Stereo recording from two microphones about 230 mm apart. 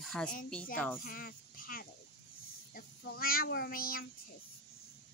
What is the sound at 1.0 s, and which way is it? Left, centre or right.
Speech, left.